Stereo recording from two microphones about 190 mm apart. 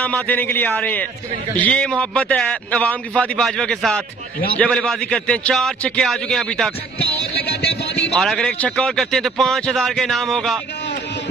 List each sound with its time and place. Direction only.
0.0 s a man's voice: 10° left (ahead or behind)
7.6 s a sound: 65° left (ahead or behind)
8.2 s a man's voice: centre (ahead or behind)